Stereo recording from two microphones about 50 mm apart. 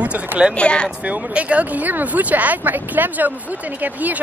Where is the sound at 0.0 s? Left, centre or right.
Right.